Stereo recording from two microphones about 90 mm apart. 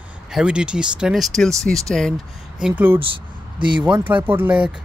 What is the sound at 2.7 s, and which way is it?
Speech, 20° right (ahead or behind).